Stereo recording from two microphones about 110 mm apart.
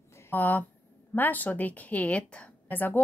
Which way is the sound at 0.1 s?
20° left (ahead or behind).